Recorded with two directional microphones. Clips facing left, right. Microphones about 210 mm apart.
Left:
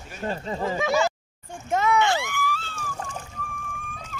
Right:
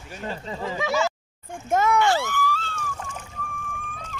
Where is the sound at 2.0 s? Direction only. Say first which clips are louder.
Right 2 dB; 15° left (ahead or behind).